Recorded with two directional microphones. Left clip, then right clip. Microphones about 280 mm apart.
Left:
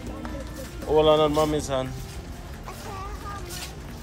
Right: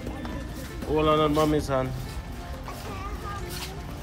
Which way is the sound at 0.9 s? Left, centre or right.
Centre.